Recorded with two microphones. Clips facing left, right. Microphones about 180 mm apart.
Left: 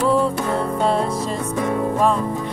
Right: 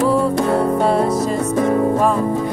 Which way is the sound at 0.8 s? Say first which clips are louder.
Right 3 dB; 5° right (ahead or behind).